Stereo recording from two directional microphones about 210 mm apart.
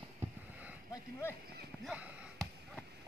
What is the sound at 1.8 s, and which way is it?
Basketball bounce, 5° right (ahead or behind).